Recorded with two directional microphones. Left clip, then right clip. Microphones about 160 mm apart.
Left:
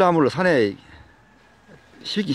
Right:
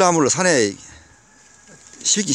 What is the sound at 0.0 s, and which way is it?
Speech, 15° right (ahead or behind).